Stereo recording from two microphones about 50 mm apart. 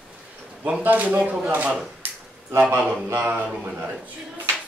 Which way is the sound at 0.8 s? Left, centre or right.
Right.